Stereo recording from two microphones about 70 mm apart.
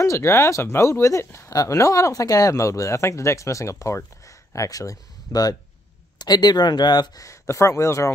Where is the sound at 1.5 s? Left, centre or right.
Left.